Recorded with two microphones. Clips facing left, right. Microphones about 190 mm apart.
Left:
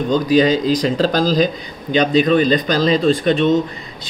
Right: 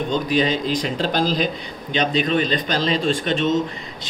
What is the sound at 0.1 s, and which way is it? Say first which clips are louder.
Speech: left 8 dB; 40° left (ahead or behind).